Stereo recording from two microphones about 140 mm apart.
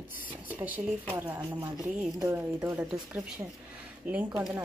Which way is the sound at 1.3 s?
30° right (ahead or behind).